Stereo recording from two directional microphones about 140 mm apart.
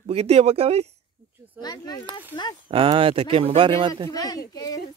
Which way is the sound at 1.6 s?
30° left (ahead or behind).